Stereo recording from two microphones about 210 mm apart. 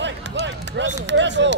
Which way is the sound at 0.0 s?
60° right (ahead or behind).